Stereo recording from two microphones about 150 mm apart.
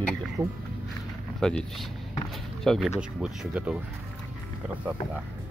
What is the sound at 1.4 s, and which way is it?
Speech, 5° left (ahead or behind).